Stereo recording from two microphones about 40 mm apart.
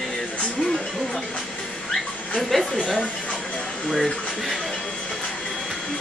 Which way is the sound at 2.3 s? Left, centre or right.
Centre.